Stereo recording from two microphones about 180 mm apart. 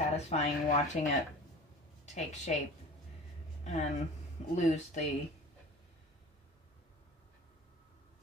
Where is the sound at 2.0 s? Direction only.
40° left (ahead or behind).